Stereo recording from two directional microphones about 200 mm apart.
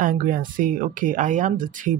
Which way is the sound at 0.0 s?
45° right (ahead or behind).